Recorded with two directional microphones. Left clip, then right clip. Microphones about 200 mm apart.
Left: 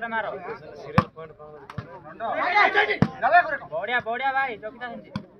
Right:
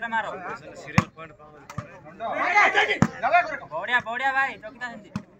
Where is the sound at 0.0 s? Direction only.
50° left (ahead or behind).